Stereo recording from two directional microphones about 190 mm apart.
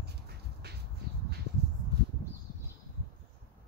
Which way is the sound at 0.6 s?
60° right (ahead or behind).